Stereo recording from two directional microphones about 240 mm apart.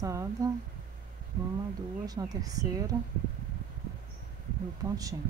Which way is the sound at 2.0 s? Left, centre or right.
Centre.